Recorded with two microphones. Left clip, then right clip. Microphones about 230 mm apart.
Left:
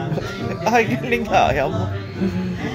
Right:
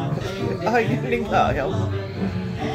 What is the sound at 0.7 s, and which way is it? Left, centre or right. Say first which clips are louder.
A man's voice: left 4 dB; left.